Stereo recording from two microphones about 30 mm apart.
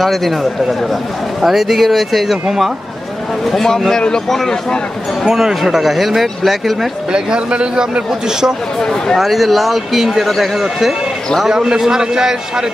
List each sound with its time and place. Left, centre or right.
0.0 s speech: centre
3.4 s a man's voice: centre
5.3 s speech: centre
7.1 s a man's voice: right
9.1 s speech: centre
11.5 s a man's voice: centre